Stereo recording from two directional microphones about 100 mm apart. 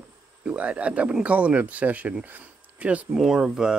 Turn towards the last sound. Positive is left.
turn(degrees=-5)  # may be behind; listen again after turning